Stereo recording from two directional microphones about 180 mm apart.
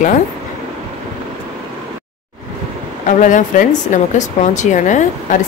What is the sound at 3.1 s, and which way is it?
Speech, 45° left (ahead or behind).